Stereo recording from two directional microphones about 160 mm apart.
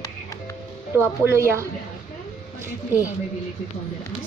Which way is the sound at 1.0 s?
15° right (ahead or behind).